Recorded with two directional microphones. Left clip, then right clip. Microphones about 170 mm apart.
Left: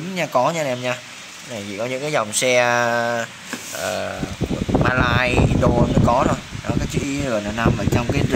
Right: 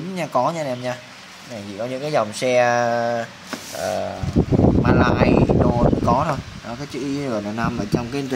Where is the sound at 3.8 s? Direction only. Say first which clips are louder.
Right 1 dB; 10° right (ahead or behind).